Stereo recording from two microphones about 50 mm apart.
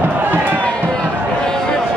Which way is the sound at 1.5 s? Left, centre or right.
Centre.